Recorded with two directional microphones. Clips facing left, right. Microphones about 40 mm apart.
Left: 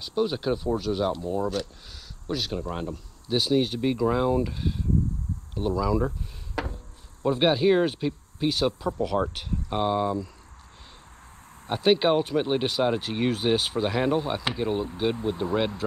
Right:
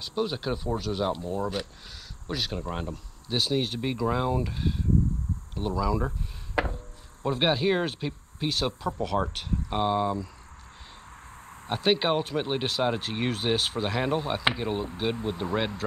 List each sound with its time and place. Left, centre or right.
0.0 s speech: centre
6.6 s chop: right
7.2 s speech: centre
11.6 s speech: centre